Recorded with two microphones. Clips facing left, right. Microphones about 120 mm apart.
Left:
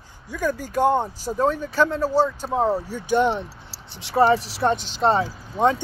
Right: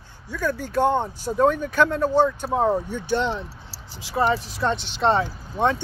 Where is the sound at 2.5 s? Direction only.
5° right (ahead or behind).